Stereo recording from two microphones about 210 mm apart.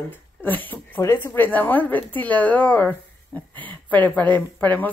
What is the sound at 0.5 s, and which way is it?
Speech, 10° left (ahead or behind).